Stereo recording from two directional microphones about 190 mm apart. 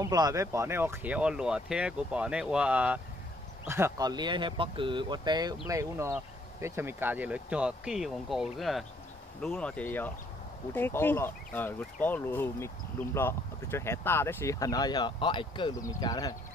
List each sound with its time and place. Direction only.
0.0 s speech: 15° right (ahead or behind); by 16.3 s 20° left (ahead or behind)